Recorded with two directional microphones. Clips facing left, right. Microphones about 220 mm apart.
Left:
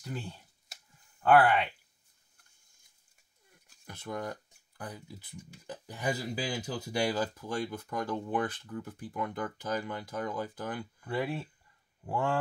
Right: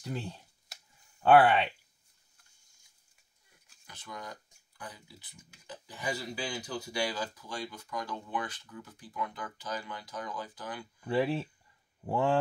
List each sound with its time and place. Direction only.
0.0 s speech: 25° right (ahead or behind)
3.8 s speech: 55° left (ahead or behind)
11.1 s speech: 25° right (ahead or behind)